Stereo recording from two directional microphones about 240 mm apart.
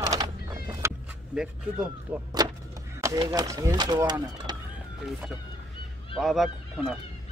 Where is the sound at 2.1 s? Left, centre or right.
Centre.